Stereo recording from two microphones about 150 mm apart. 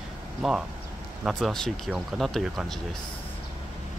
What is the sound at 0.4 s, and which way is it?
Speech, 5° right (ahead or behind).